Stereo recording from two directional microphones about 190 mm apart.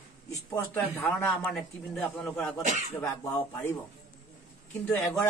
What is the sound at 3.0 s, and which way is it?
Speech, 10° left (ahead or behind).